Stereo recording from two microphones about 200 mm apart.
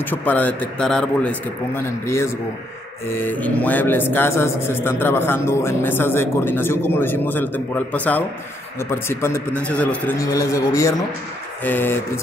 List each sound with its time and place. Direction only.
0.0 s a man's voice: 10° left (ahead or behind)
10.3 s a man's voice: 15° left (ahead or behind)